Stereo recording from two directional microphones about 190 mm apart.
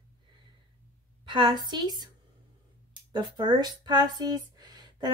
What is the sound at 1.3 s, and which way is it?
Speech, 25° right (ahead or behind).